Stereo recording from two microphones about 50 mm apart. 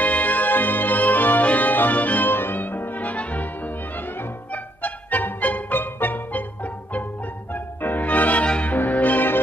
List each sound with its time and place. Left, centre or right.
0.0 s music: left
4.8 s music: left
8.7 s music: left